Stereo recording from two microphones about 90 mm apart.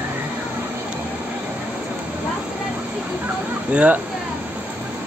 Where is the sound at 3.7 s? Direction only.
15° right (ahead or behind).